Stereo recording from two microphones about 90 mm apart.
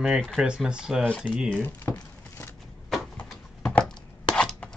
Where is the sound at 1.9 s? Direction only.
35° left (ahead or behind).